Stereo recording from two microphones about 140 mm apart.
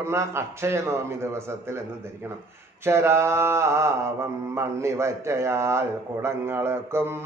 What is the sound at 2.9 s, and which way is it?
Mantra, 20° right (ahead or behind).